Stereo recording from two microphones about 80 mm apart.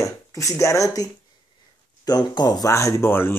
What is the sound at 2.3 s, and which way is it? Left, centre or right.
Speech, left.